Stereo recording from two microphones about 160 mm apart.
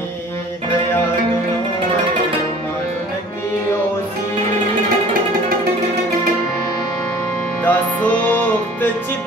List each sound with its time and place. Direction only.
7.6 s music: 10° left (ahead or behind)